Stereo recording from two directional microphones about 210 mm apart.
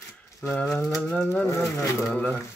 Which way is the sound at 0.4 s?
5° left (ahead or behind).